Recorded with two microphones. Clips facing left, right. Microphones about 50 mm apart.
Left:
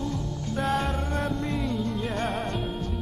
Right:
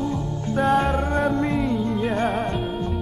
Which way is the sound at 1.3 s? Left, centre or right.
Right.